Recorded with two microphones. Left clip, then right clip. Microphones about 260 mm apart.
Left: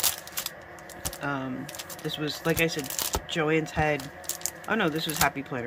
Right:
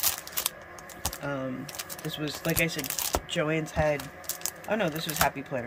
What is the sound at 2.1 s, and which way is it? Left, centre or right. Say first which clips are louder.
Speech: left 3 dB; centre.